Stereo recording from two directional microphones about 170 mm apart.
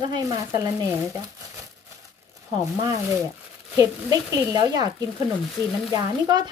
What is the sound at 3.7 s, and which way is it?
A child's voice, 20° right (ahead or behind).